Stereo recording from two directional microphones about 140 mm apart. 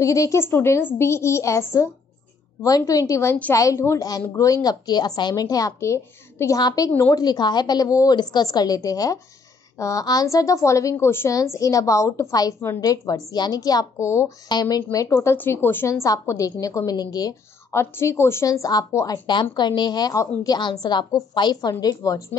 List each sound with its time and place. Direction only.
0.0 s a woman's voice: 20° left (ahead or behind)
14.5 s a woman's voice: 30° left (ahead or behind)